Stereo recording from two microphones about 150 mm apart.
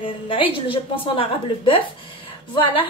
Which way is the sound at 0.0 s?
35° left (ahead or behind).